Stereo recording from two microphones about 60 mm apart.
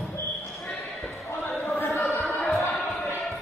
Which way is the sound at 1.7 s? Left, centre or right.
Left.